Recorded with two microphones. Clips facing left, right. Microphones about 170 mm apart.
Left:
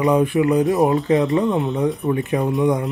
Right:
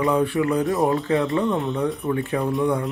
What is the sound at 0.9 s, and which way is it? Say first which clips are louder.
Speech: left 4 dB; 20° left (ahead or behind).